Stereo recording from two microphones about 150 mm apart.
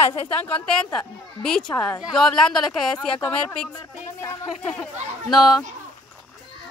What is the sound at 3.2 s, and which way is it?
Speech, 10° left (ahead or behind).